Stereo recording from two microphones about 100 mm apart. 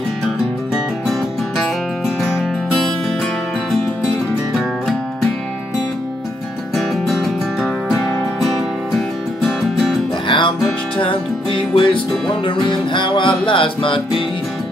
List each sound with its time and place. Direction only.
6.7 s music: centre (ahead or behind)
10.2 s music: 55° left (ahead or behind)